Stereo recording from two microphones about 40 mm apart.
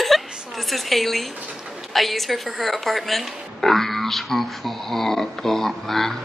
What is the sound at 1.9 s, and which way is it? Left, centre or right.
Speech, centre.